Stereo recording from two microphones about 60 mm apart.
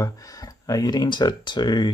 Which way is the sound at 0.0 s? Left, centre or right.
Left.